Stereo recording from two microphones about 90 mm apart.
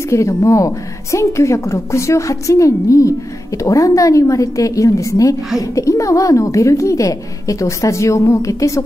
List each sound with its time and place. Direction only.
0.1 s a woman's voice: 35° left (ahead or behind)